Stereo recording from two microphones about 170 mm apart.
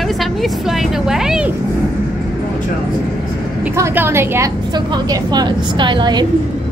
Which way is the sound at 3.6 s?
15° right (ahead or behind).